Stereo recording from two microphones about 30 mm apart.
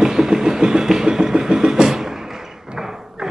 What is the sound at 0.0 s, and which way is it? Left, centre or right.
Vehicle, right.